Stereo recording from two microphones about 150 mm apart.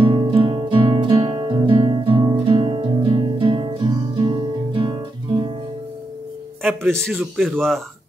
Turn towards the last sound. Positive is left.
turn(degrees=0)  # may be behind; listen again after turning